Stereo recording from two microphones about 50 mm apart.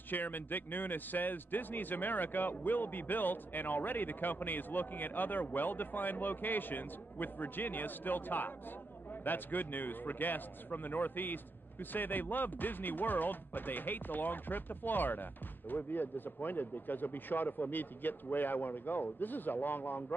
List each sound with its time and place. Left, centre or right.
0.1 s a man's voice: left